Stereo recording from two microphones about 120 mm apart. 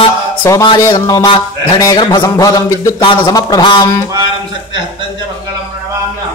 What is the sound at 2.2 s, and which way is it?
Speech, 25° left (ahead or behind).